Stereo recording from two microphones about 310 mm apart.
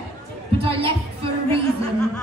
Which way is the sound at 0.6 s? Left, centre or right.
Centre.